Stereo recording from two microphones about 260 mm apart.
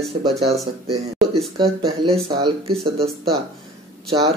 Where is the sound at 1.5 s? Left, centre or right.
Centre.